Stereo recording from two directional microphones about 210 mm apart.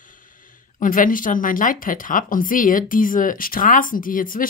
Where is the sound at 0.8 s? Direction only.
40° left (ahead or behind).